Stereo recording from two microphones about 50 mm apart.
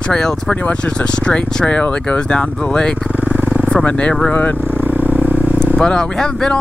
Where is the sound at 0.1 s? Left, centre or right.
Centre.